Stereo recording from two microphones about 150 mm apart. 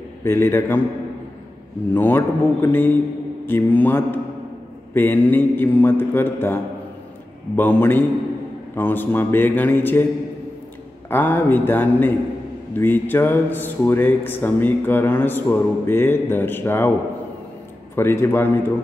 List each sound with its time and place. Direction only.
0.2 s speech: 15° left (ahead or behind)
2.0 s speech: 15° left (ahead or behind)
11.1 s speech: 10° left (ahead or behind)
17.9 s speech: 15° left (ahead or behind)